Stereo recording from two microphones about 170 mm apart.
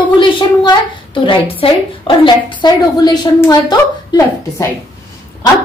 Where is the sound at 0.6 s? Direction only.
30° left (ahead or behind).